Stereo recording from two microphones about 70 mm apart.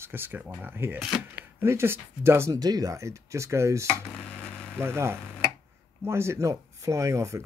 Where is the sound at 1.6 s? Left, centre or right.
Right.